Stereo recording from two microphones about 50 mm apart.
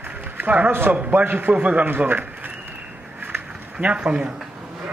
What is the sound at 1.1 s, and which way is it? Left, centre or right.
A man's voice, right.